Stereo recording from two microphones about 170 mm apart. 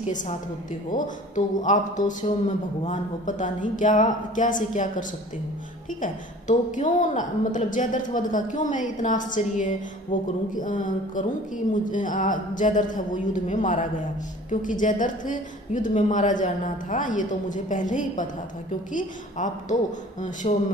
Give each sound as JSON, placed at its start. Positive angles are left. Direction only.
{"t": 0.0, "sound": "a woman's voice", "side_deg": 50}